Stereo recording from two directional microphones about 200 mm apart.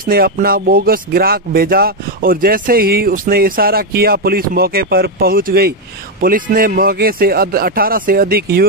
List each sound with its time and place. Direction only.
0.0 s speech: 50° right (ahead or behind)